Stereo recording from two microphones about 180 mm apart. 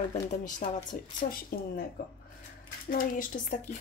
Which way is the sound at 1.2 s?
55° left (ahead or behind).